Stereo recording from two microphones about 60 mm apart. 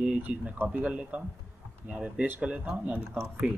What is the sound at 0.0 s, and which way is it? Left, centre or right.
Speech, right.